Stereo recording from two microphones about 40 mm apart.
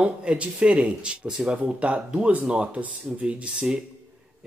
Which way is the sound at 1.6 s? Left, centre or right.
Right.